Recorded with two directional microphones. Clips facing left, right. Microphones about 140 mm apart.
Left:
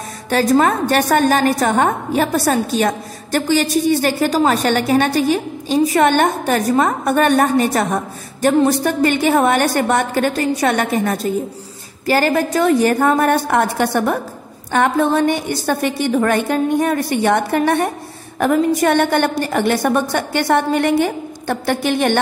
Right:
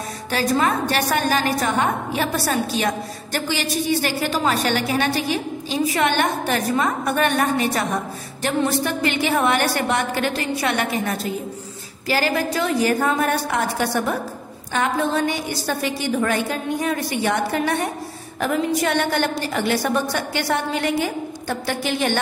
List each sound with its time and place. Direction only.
0.3 s a woman's voice: 45° left (ahead or behind)